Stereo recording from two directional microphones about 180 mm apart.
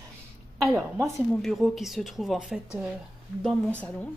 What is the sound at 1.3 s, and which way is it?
Speech, centre (ahead or behind).